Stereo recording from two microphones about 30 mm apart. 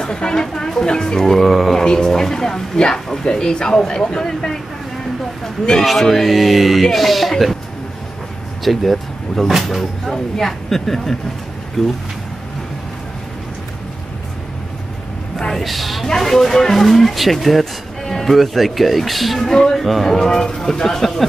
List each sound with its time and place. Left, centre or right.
0.0 s speech: left
1.4 s speech: centre
2.0 s speech: centre
5.4 s a sound: centre
6.1 s speech: centre
8.6 s speech: centre
10.1 s speech: centre
15.5 s speech: centre
19.4 s speech: centre